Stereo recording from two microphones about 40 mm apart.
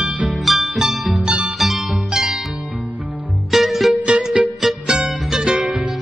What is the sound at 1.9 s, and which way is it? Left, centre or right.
Pizzicato, centre.